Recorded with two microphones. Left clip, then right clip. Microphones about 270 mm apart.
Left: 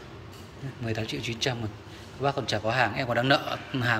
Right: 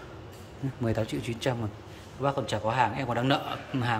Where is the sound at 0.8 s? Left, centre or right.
Right.